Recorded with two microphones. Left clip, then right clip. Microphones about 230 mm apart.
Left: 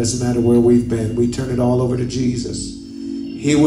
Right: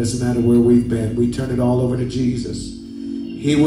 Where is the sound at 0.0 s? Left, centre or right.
Centre.